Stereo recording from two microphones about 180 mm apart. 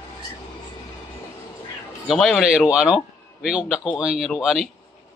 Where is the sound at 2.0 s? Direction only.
Centre (ahead or behind).